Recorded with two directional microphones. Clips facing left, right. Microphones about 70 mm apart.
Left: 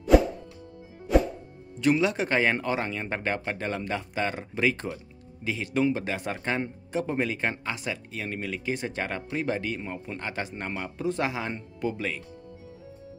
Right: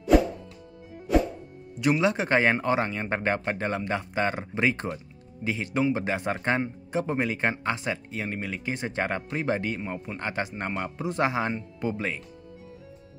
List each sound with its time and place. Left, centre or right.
1.8 s a man's voice: right
9.8 s a man's voice: centre
10.1 s a man's voice: right